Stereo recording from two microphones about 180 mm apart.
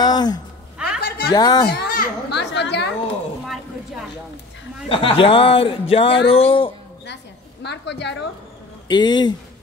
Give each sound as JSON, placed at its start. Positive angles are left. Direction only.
{"t": 0.0, "sound": "a sound", "side_deg": 20}
{"t": 1.0, "sound": "a sound", "side_deg": 60}
{"t": 1.3, "sound": "a man's voice", "side_deg": 20}
{"t": 1.7, "sound": "children playing", "side_deg": 60}
{"t": 2.5, "sound": "a woman's voice", "side_deg": 70}
{"t": 4.8, "sound": "a man's voice", "side_deg": 30}
{"t": 7.6, "sound": "a woman's voice", "side_deg": 70}
{"t": 8.8, "sound": "a man's voice", "side_deg": 25}